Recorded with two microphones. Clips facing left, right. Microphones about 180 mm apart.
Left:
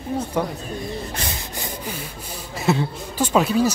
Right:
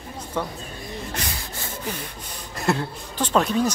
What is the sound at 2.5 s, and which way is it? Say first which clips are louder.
Speech: left 3 dB; centre (ahead or behind).